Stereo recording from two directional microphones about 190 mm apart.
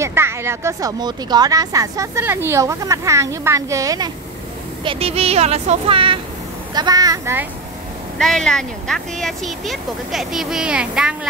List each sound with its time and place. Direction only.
0.0 s speech: 15° right (ahead or behind)
4.8 s speech: 30° right (ahead or behind); by 7.4 s 15° right (ahead or behind)
8.2 s speech: 5° left (ahead or behind)